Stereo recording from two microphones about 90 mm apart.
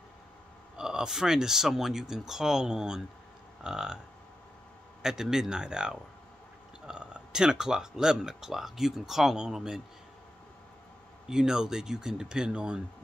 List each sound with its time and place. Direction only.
0.7 s speech: 5° right (ahead or behind)
5.0 s speech: 5° right (ahead or behind)
11.2 s speech: 5° right (ahead or behind)